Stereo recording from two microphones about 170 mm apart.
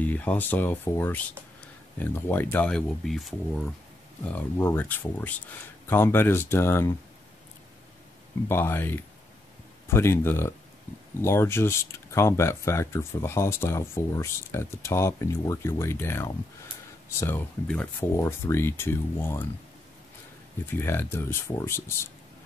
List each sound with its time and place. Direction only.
0.0 s speech: 10° left (ahead or behind)
8.5 s speech: 15° left (ahead or behind)
20.6 s speech: 15° left (ahead or behind)